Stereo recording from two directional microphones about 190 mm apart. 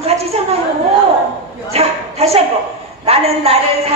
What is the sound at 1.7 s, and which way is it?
A woman's voice, 30° right (ahead or behind).